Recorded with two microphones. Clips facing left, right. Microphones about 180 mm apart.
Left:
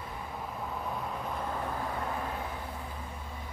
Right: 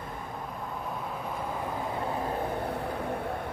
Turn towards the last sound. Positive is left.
turn(degrees=-60)  # may be behind; listen again after turning